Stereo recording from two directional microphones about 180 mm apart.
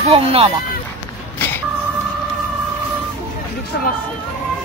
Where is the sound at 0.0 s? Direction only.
30° right (ahead or behind).